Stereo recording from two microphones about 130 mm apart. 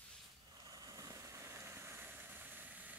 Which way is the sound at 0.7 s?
30° right (ahead or behind).